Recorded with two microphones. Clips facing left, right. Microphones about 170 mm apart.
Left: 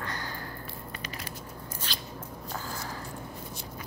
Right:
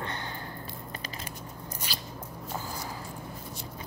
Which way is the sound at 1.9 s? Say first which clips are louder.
Right 1 dB; 5° right (ahead or behind).